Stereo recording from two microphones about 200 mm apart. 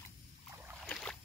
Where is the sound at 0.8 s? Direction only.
5° left (ahead or behind).